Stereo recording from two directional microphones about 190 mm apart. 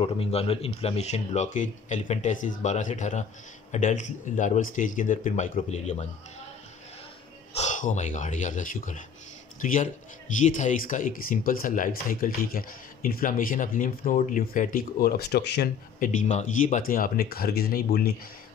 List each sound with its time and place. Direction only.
0.0 s speech: 30° left (ahead or behind)
7.5 s a man's voice: 40° left (ahead or behind); by 15.7 s 60° left (ahead or behind)
16.0 s speech: 40° left (ahead or behind)